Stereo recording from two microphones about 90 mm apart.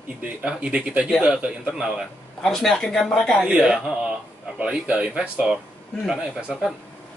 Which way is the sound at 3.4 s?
10° right (ahead or behind).